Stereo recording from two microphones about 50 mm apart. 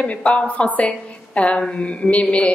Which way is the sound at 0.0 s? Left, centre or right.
Left.